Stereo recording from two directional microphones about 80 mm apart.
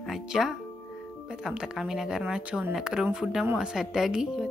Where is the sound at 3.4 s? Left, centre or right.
Centre.